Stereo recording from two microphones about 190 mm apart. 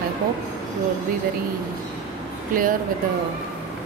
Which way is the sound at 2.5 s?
45° right (ahead or behind).